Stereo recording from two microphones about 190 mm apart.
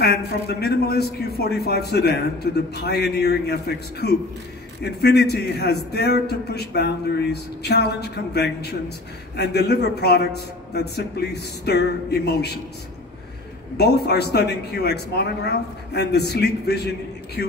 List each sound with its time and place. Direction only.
0.0 s a man's voice: 60° left (ahead or behind)
13.7 s a man's voice: 55° left (ahead or behind)